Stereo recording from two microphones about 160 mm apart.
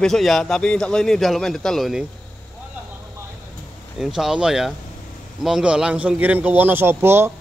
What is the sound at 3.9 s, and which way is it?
A man's voice, 5° right (ahead or behind).